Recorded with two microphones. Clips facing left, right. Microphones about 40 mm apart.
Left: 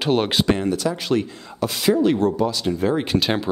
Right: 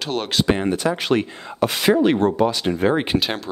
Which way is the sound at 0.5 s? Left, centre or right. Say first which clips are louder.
Right 1 dB; right.